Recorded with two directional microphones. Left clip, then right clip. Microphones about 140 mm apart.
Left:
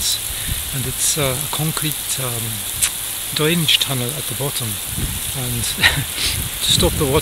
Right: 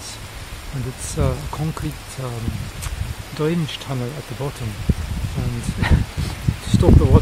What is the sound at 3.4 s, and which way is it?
Speech, 15° left (ahead or behind).